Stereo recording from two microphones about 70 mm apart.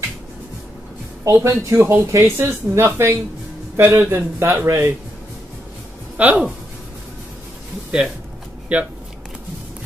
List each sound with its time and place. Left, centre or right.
1.2 s speech: right
6.1 s speech: right
8.7 s speech: centre